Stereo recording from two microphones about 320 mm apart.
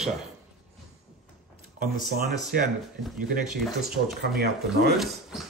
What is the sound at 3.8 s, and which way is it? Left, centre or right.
Speech, right.